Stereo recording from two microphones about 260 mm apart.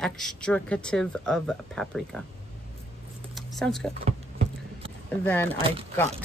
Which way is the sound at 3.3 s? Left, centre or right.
Centre.